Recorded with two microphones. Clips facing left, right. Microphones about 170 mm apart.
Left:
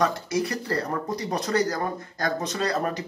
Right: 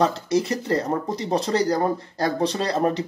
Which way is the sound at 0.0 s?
25° right (ahead or behind).